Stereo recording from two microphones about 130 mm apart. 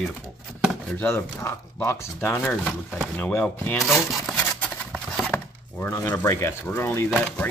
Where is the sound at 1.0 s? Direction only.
15° left (ahead or behind).